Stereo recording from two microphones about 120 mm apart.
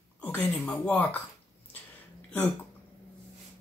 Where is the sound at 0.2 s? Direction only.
15° left (ahead or behind).